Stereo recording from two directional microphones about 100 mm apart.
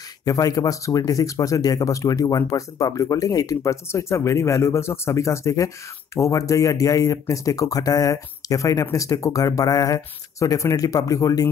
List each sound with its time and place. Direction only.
0.2 s speech: 35° left (ahead or behind)